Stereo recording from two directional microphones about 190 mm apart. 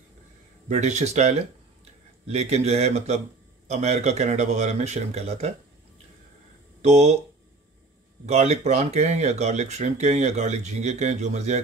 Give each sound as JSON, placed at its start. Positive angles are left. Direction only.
{"t": 0.7, "sound": "speech", "side_deg": -40}
{"t": 6.8, "sound": "speech", "side_deg": -35}
{"t": 8.3, "sound": "speech", "side_deg": -35}